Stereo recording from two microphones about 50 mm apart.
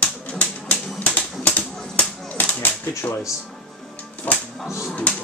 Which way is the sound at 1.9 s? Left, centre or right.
Left.